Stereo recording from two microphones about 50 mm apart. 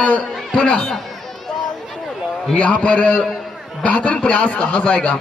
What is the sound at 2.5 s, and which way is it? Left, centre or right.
A man's voice, left.